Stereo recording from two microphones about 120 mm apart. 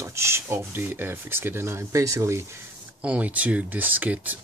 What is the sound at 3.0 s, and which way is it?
Speech, 10° right (ahead or behind).